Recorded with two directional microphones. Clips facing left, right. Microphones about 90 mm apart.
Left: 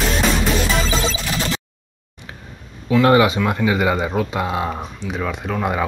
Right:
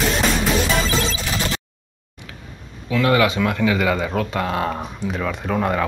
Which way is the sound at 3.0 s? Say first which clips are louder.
Left 2 dB; 25° left (ahead or behind).